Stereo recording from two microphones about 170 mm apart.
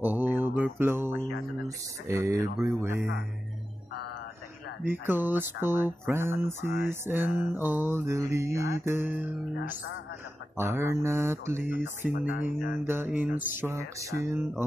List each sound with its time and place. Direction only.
0.0 s mantra: 10° right (ahead or behind)
2.0 s speech: 20° right (ahead or behind)
4.8 s speech: 10° right (ahead or behind)
10.6 s speech: 15° right (ahead or behind)